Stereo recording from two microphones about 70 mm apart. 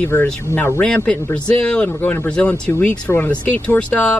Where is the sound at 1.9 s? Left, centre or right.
Left.